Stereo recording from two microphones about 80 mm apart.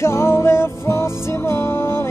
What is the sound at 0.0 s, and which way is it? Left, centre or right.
Music, left.